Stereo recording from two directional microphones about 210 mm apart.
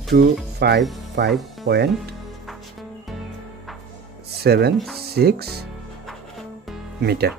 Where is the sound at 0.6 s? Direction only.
50° right (ahead or behind).